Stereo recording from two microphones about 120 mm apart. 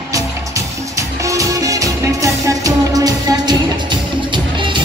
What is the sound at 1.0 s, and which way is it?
Music, 25° right (ahead or behind).